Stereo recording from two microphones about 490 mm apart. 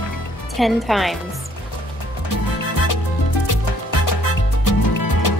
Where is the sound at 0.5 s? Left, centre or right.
Centre.